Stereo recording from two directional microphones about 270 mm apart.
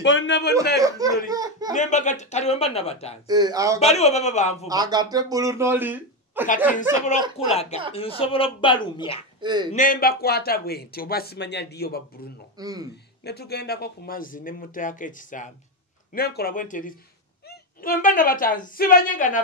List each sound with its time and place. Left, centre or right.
0.0 s a man's voice: left
0.7 s speech: centre
1.7 s speech: left
3.3 s speech: centre
3.8 s speech: left
4.6 s speech: centre
8.2 s speech: centre
9.4 s speech: centre
9.7 s speech: left
12.5 s speech: centre
13.2 s a woman's voice: left